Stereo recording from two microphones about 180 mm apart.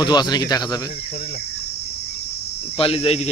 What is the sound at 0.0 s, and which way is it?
Speech, 25° left (ahead or behind).